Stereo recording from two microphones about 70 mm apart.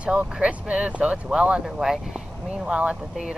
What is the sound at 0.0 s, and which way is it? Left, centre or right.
Speech, centre.